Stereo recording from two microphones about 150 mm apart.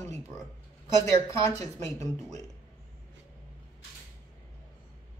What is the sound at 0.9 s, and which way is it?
Speech, 20° left (ahead or behind).